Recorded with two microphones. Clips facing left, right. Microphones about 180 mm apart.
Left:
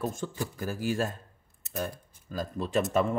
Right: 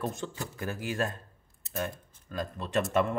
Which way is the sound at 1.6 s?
Centre (ahead or behind).